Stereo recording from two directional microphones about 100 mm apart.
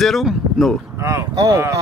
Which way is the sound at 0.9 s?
30° right (ahead or behind).